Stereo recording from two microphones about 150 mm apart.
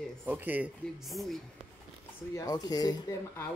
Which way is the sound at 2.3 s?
25° left (ahead or behind).